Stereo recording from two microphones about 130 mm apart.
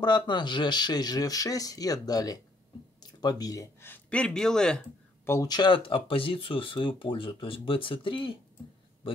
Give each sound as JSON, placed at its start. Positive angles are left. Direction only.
{"t": 0.0, "sound": "speech", "side_deg": 35}
{"t": 3.0, "sound": "a sound", "side_deg": 30}
{"t": 3.8, "sound": "speech", "side_deg": 10}
{"t": 5.2, "sound": "speech", "side_deg": 20}
{"t": 5.5, "sound": "speech", "side_deg": 35}